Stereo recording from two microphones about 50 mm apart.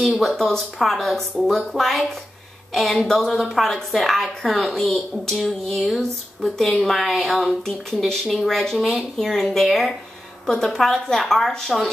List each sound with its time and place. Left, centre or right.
0.2 s a woman's voice: centre